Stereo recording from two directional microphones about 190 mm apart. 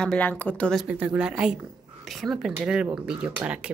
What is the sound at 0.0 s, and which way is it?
Speech, 5° left (ahead or behind).